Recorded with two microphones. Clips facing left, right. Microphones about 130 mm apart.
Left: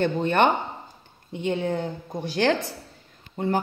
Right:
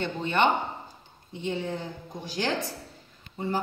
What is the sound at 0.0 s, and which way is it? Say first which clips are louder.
A woman's voice: left 4 dB; 50° left (ahead or behind).